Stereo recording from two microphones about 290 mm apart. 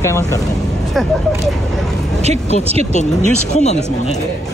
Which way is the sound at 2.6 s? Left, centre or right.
Right.